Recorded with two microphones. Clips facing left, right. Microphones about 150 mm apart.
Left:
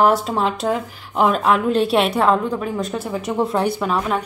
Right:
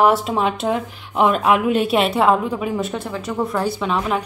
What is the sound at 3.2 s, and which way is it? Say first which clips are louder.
Speech: left 3 dB; 20° left (ahead or behind).